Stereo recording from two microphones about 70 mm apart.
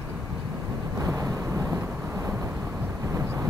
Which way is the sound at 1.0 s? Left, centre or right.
Right.